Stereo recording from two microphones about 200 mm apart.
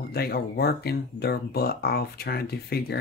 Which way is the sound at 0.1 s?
50° left (ahead or behind).